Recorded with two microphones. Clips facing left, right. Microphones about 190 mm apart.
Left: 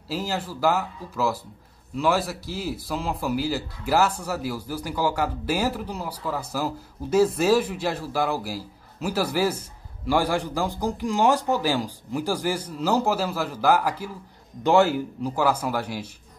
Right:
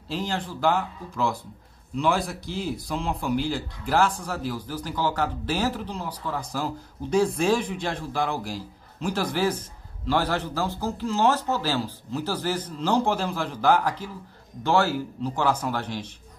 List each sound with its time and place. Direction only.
0.1 s speech: 5° left (ahead or behind)